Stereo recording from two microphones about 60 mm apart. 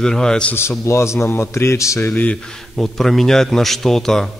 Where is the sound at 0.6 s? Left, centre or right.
Left.